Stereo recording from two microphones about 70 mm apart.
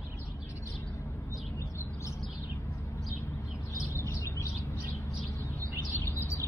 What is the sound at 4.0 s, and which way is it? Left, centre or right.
Bird, left.